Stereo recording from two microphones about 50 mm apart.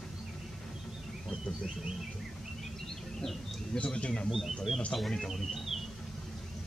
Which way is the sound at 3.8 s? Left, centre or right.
Left.